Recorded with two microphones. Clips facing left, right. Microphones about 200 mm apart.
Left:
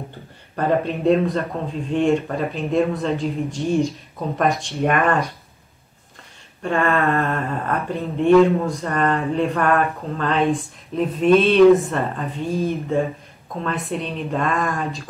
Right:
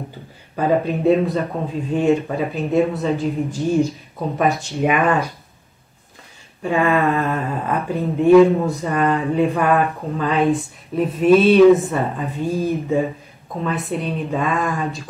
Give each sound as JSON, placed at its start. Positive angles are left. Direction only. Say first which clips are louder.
{"t": 0.6, "sound": "speech", "louder": "right 2 dB", "side_deg": -5}
{"t": 6.6, "sound": "speech", "louder": "right 2 dB", "side_deg": -5}